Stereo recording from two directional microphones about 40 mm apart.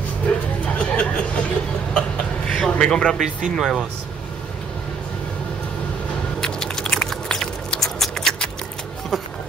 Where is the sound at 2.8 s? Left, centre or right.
Centre.